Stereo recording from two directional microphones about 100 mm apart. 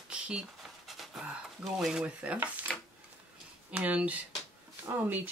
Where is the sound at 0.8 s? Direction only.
Centre (ahead or behind).